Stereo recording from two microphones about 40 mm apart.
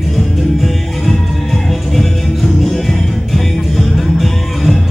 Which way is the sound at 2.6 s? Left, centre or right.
Centre.